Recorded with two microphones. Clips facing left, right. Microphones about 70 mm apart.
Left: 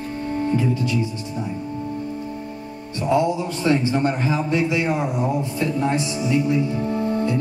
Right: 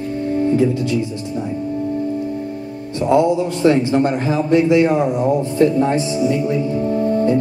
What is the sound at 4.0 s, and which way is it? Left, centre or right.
A man's voice, right.